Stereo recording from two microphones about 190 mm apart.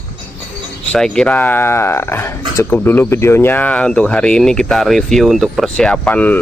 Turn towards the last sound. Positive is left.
turn(degrees=10)  # may be behind; listen again after turning